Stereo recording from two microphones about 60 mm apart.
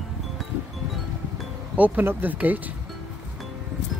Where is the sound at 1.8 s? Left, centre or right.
Right.